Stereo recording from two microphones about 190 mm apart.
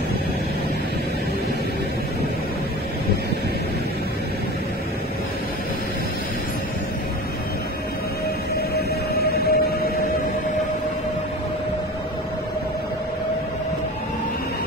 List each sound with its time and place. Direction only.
8.5 s music: 55° left (ahead or behind)